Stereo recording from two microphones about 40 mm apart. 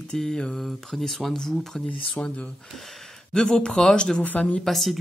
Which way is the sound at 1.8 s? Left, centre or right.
Left.